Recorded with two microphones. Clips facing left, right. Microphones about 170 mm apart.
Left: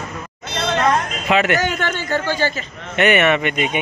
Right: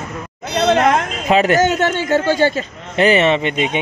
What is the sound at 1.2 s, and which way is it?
Speech, 35° right (ahead or behind).